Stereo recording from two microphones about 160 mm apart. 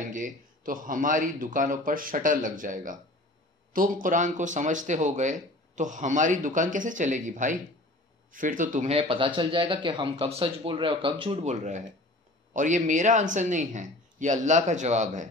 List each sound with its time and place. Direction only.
0.0 s a man's voice: 55° right (ahead or behind)
8.9 s speech: 35° right (ahead or behind)